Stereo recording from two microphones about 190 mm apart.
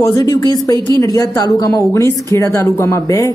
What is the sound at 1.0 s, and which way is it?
A woman's voice, 20° left (ahead or behind).